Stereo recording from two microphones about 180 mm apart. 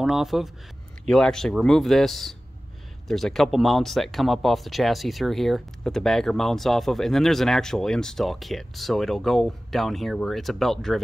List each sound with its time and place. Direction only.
0.0 s speech: centre (ahead or behind)